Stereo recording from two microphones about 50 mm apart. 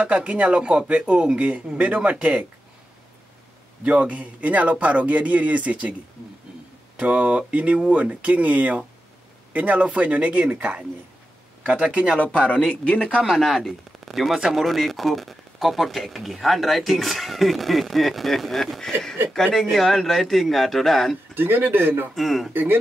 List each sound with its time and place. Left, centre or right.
0.0 s a man's voice: right
3.8 s a man's voice: right
7.0 s a man's voice: right
12.2 s speech: left
13.2 s speech: centre
21.4 s speech: right
22.1 s speech: centre
22.5 s speech: right